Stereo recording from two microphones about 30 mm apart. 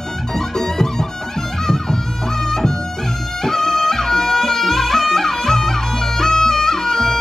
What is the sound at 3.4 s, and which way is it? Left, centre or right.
Music, centre.